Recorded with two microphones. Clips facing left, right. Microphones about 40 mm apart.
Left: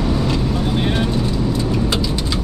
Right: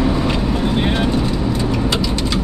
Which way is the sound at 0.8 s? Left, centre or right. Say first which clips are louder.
Right 2 dB; centre.